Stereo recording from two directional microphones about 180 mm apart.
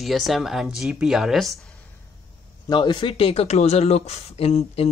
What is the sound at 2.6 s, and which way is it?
Speech, 25° left (ahead or behind).